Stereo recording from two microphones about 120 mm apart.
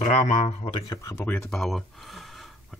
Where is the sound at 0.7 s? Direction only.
30° left (ahead or behind).